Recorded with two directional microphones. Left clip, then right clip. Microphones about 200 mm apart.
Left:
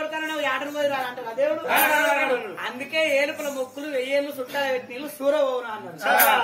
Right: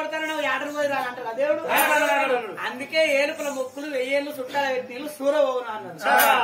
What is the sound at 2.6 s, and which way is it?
A man's voice, 10° right (ahead or behind).